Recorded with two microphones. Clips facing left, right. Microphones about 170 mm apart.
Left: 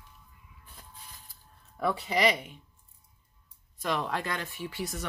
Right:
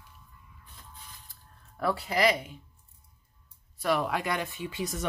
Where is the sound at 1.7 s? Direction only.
Centre (ahead or behind).